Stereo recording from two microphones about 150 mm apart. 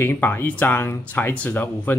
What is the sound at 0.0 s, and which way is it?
Speech, 15° left (ahead or behind).